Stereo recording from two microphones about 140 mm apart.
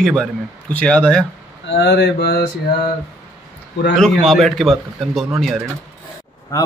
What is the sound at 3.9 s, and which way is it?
A man's voice, centre (ahead or behind).